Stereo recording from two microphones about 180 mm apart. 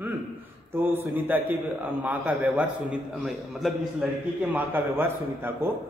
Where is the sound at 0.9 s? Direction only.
10° right (ahead or behind).